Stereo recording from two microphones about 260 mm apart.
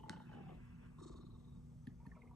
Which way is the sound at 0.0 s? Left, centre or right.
Centre.